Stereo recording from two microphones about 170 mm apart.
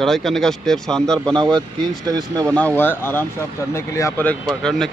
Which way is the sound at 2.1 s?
20° right (ahead or behind).